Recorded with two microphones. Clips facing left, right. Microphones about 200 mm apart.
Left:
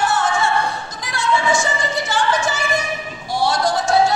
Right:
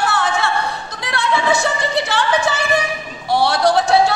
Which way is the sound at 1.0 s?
65° right (ahead or behind).